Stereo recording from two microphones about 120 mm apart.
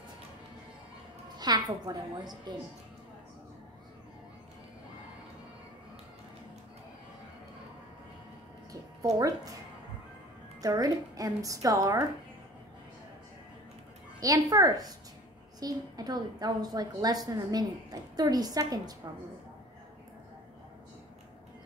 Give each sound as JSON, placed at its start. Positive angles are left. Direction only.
{"t": 1.4, "sound": "a woman's voice", "side_deg": -35}
{"t": 9.0, "sound": "a woman's voice", "side_deg": -30}
{"t": 10.6, "sound": "a woman's voice", "side_deg": -30}
{"t": 14.2, "sound": "a woman's voice", "side_deg": -30}